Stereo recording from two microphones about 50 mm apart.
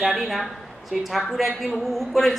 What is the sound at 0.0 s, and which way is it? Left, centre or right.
A woman's voice, centre.